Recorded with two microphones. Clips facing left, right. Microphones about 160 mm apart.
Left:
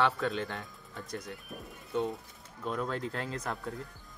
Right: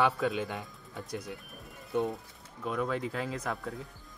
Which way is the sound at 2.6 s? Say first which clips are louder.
Right 2 dB; 5° right (ahead or behind).